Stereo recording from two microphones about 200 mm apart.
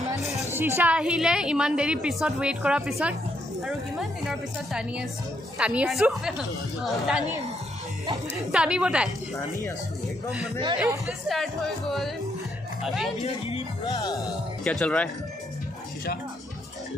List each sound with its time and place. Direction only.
0.5 s a woman's voice: 10° right (ahead or behind)
8.5 s a woman's voice: 5° right (ahead or behind)
11.1 s a woman's voice: centre (ahead or behind)
13.8 s music: 15° left (ahead or behind)
14.6 s a woman's voice: 5° left (ahead or behind)